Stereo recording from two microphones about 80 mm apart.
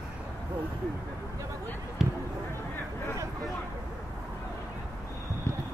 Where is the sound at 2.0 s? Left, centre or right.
Centre.